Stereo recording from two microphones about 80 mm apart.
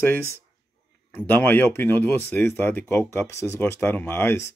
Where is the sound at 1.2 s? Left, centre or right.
Left.